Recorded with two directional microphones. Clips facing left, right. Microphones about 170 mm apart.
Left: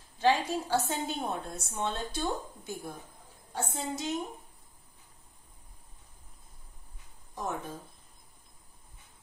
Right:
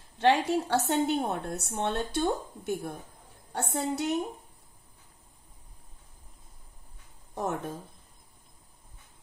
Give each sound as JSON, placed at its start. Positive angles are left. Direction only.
{"t": 0.2, "sound": "a woman's voice", "side_deg": -65}
{"t": 7.3, "sound": "a woman's voice", "side_deg": -65}